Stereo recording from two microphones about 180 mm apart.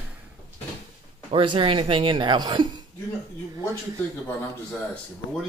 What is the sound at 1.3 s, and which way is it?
Speech, 30° right (ahead or behind).